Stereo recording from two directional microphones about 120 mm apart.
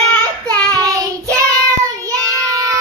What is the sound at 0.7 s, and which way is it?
Child singing, 30° right (ahead or behind).